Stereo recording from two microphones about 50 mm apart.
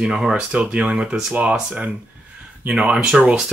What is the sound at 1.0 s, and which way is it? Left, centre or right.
Speech, centre.